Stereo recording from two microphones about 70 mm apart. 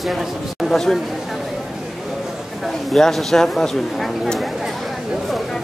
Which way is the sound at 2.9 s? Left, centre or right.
Centre.